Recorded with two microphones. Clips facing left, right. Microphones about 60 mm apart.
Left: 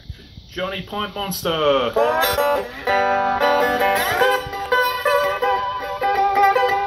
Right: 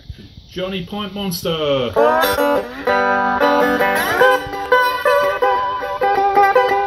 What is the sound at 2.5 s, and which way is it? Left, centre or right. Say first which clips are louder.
Music: right 3 dB; right.